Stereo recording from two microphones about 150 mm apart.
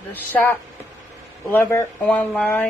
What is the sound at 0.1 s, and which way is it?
A woman's voice, 10° left (ahead or behind).